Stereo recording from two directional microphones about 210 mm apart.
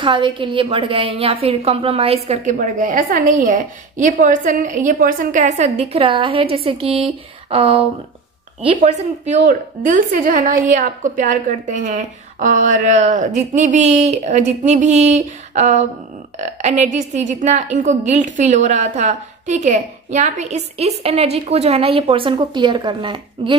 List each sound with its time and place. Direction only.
0.0 s a woman's voice: 25° right (ahead or behind)
9.2 s a woman's voice: 35° right (ahead or behind)